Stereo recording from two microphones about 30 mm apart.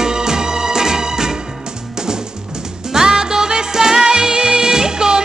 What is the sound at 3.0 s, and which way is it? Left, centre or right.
Music, centre.